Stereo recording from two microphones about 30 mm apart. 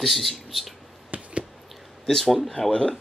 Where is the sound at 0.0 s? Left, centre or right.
Centre.